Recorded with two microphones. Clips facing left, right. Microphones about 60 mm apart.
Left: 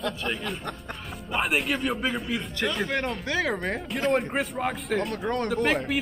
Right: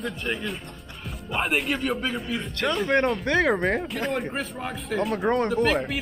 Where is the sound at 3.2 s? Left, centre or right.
Right.